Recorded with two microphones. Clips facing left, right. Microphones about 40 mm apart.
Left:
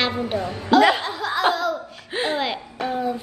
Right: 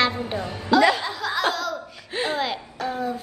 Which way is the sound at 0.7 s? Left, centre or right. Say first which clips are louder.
Left 2 dB; left.